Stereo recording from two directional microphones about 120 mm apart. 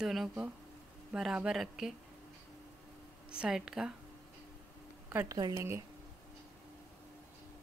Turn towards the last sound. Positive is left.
turn(degrees=-25)  # may be behind; listen again after turning